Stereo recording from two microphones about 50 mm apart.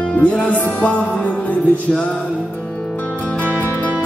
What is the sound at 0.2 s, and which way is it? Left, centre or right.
Music, left.